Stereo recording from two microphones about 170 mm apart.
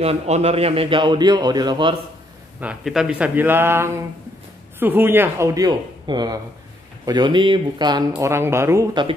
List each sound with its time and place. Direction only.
0.0 s a man's voice: 35° right (ahead or behind)
2.6 s a man's voice: 5° right (ahead or behind); by 8.0 s 25° right (ahead or behind)
8.2 s speech: 15° right (ahead or behind)